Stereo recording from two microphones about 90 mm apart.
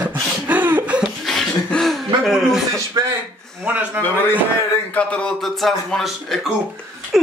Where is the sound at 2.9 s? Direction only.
40° right (ahead or behind).